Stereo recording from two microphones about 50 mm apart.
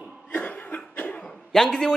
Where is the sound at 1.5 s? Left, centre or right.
Centre.